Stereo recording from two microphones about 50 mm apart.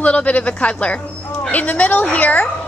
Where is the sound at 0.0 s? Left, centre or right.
Left.